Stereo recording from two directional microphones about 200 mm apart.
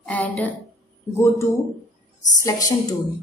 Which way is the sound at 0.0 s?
5° left (ahead or behind).